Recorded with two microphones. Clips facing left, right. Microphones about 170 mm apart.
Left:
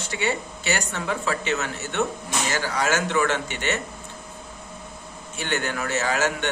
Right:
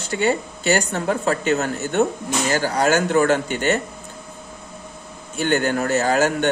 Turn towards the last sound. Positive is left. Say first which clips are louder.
# right 6 dB
turn(degrees=-40)  # may be behind; listen again after turning